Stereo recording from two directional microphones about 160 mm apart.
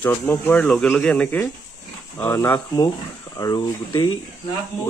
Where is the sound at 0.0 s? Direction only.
10° left (ahead or behind).